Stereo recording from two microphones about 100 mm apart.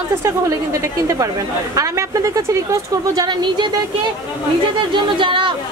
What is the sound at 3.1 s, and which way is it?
Speech, 45° right (ahead or behind).